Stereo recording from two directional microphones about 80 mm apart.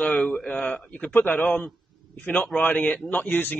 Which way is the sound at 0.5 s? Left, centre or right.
Centre.